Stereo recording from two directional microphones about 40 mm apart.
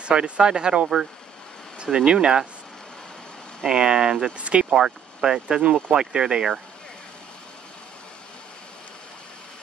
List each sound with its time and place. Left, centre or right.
0.0 s speech: right
3.6 s speech: right
4.4 s speech: right
4.7 s speech: centre